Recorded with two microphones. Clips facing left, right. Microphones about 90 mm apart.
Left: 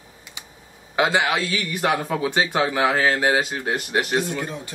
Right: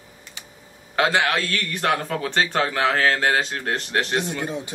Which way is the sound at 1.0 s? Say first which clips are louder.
Even; 15° left (ahead or behind).